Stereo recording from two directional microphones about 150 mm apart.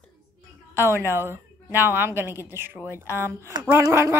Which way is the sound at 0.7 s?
15° right (ahead or behind).